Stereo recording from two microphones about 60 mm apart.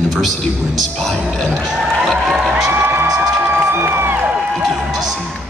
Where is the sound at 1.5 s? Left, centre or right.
Centre.